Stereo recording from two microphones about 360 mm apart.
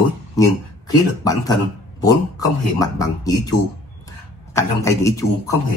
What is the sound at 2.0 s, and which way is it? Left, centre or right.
Speech, centre.